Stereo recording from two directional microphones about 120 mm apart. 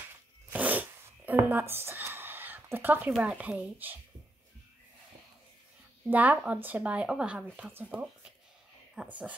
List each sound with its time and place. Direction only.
0.5 s zipper: 15° right (ahead or behind)
3.1 s speech: 5° right (ahead or behind)
6.0 s speech: 15° right (ahead or behind)